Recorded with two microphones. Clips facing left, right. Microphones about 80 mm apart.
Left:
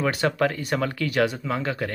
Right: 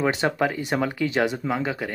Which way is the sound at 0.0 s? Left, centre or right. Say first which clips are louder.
Even; right.